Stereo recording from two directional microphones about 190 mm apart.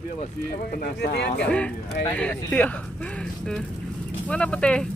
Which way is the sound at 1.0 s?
55° left (ahead or behind).